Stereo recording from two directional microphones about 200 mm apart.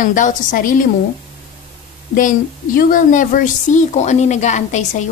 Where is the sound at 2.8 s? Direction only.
40° left (ahead or behind).